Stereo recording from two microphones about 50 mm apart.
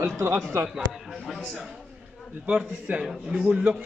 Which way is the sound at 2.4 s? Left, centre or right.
Right.